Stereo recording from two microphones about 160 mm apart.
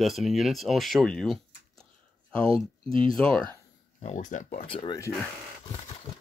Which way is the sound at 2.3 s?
35° right (ahead or behind).